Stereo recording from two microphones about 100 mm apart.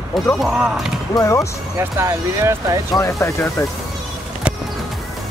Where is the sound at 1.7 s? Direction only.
30° right (ahead or behind).